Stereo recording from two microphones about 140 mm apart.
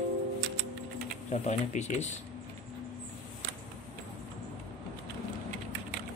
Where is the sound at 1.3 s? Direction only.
55° left (ahead or behind).